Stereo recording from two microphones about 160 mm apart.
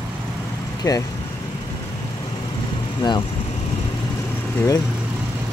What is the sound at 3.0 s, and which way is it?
Speech, 30° left (ahead or behind).